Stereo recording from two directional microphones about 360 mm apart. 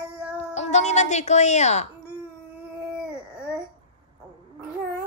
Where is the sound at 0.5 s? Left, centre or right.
Centre.